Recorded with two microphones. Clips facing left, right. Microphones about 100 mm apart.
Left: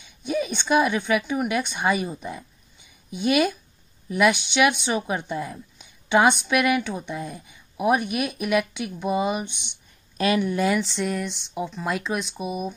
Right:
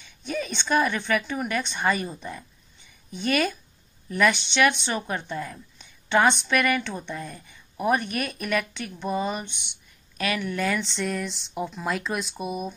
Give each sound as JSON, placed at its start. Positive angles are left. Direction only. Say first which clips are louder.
{"t": 0.0, "sound": "a woman's voice", "louder": "left 4 dB", "side_deg": 10}
{"t": 9.6, "sound": "speech", "louder": "left 2 dB", "side_deg": 25}
{"t": 10.8, "sound": "speech", "louder": "left 2 dB", "side_deg": 5}